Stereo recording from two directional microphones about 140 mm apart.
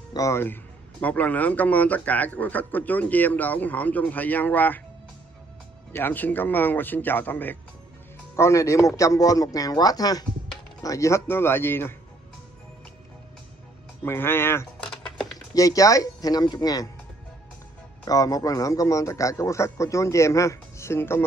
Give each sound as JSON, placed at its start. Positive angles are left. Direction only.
{"t": 0.1, "sound": "a man's voice", "side_deg": 20}
{"t": 5.9, "sound": "a man's voice", "side_deg": 15}
{"t": 14.0, "sound": "a man's voice", "side_deg": 15}
{"t": 14.9, "sound": "typing", "side_deg": 5}
{"t": 15.3, "sound": "a man's voice", "side_deg": 25}
{"t": 18.0, "sound": "a man's voice", "side_deg": 25}